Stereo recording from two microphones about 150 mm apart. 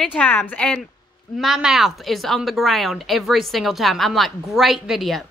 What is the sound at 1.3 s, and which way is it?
Speech, centre (ahead or behind).